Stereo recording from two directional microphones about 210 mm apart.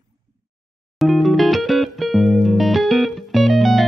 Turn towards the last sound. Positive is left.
turn(degrees=0)  # may be behind; listen again after turning